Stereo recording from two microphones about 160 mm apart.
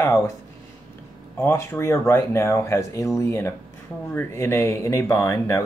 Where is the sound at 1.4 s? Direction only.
15° left (ahead or behind).